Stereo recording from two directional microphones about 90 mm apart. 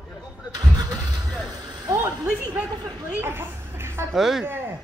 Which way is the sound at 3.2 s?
25° right (ahead or behind).